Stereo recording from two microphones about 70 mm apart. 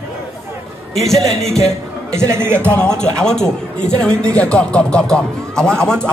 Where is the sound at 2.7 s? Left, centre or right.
Centre.